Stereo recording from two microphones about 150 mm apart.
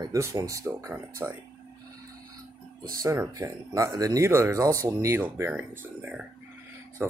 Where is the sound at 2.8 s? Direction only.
25° right (ahead or behind).